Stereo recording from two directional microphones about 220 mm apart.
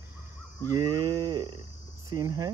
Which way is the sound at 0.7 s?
20° right (ahead or behind).